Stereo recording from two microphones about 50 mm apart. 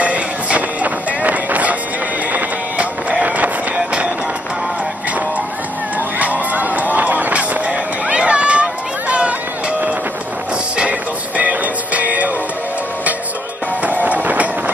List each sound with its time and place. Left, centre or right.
0.0 s music: right
6.1 s run: right
10.8 s music: right
13.8 s music: right